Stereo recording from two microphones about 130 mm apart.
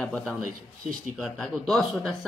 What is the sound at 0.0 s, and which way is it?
A woman's voice, 5° left (ahead or behind).